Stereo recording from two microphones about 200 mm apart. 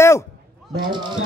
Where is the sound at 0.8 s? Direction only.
25° right (ahead or behind).